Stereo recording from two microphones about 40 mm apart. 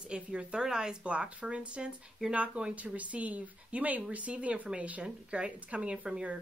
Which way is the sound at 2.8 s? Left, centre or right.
Right.